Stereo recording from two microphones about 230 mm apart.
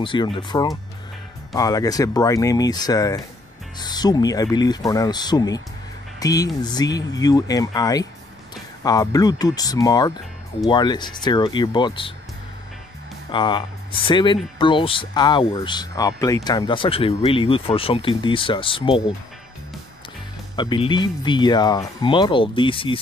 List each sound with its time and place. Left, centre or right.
0.0 s speech: left
13.3 s speech: centre
20.5 s speech: centre